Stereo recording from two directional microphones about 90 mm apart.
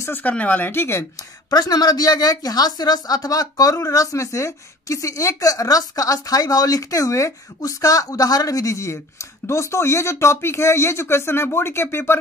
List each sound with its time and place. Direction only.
0.0 s speech: 20° left (ahead or behind)
1.5 s speech: 50° left (ahead or behind); by 12.2 s 25° left (ahead or behind)